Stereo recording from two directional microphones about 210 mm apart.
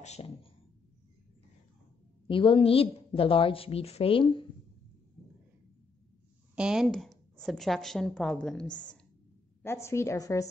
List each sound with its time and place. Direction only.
0.0 s a sound: 30° left (ahead or behind)
2.2 s a woman's voice: 25° left (ahead or behind)
6.5 s a woman's voice: 5° right (ahead or behind); by 10.4 s 15° left (ahead or behind)